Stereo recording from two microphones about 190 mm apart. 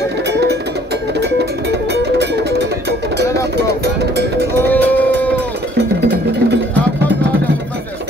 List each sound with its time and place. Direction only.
0.3 s music: 60° right (ahead or behind)
3.5 s music: 60° right (ahead or behind)
4.6 s music: 10° left (ahead or behind)
5.8 s cowbell: 60° right (ahead or behind)